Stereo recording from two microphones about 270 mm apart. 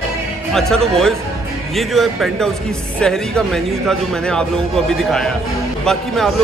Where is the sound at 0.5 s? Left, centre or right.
Centre.